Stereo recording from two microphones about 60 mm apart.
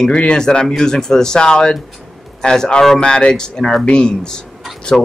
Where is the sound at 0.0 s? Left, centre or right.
Centre.